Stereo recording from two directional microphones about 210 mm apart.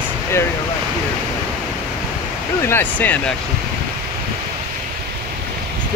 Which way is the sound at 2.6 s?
10° left (ahead or behind).